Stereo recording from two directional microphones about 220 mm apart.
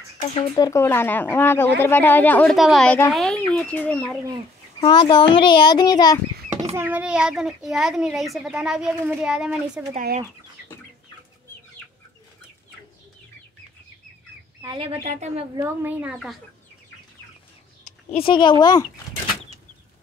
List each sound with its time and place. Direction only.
0.4 s speech: 15° left (ahead or behind)
4.7 s a child's voice: 20° left (ahead or behind)
6.6 s a child's voice: 10° right (ahead or behind)
9.9 s speech: 35° right (ahead or behind)
14.6 s speech: 20° right (ahead or behind)
15.5 s a woman's voice: 10° right (ahead or behind)
17.8 s speech: 25° left (ahead or behind)